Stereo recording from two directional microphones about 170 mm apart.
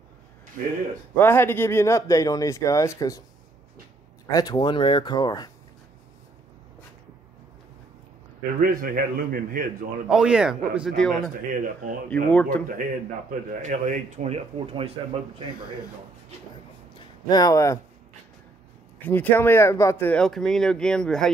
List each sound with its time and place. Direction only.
0.6 s speech: 55° right (ahead or behind)
1.1 s speech: 15° left (ahead or behind)
4.3 s speech: 20° left (ahead or behind)
8.5 s speech: 55° right (ahead or behind)
10.0 s speech: 5° right (ahead or behind)
11.5 s speech: 55° right (ahead or behind)
12.1 s speech: 10° left (ahead or behind)
13.5 s speech: 50° right (ahead or behind)
17.3 s speech: 20° left (ahead or behind)
18.9 s speech: 10° left (ahead or behind)